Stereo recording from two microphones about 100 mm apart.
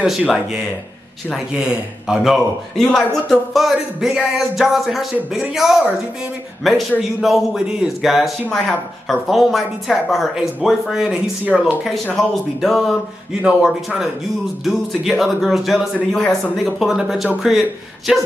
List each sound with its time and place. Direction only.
1.5 s speech: 10° right (ahead or behind)
12.2 s speech: centre (ahead or behind)